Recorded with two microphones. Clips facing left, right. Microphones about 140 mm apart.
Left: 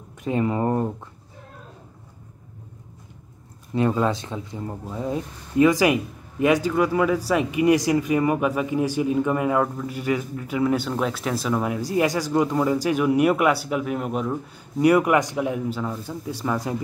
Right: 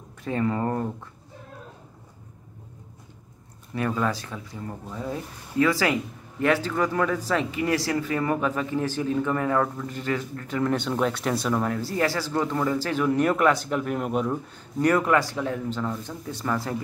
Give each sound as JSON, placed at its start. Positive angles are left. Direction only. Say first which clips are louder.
{"t": 0.2, "sound": "speech", "louder": "left 3 dB", "side_deg": 15}
{"t": 3.7, "sound": "speech", "louder": "left 5 dB", "side_deg": 20}
{"t": 14.9, "sound": "speech", "louder": "left 4 dB", "side_deg": 15}